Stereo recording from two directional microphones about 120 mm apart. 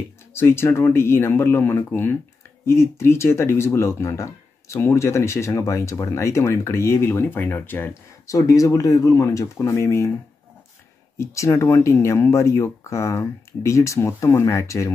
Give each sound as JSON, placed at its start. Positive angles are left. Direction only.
{"t": 0.3, "sound": "speech", "side_deg": 20}
{"t": 8.4, "sound": "speech", "side_deg": 25}
{"t": 11.1, "sound": "speech", "side_deg": 25}